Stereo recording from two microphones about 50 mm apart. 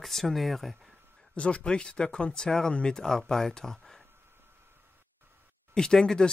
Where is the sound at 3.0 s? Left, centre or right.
Centre.